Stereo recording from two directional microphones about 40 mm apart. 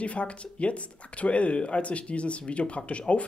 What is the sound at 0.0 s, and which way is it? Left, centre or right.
Speech, left.